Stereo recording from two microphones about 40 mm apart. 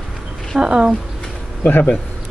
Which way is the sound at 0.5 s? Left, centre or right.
Centre.